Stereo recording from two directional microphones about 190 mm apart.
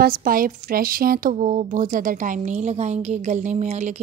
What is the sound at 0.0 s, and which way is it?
Speech, 50° right (ahead or behind).